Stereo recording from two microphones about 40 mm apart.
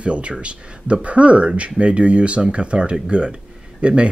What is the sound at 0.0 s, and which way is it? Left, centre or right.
Speech, right.